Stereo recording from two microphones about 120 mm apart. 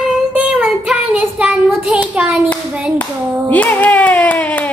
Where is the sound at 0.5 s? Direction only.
5° right (ahead or behind).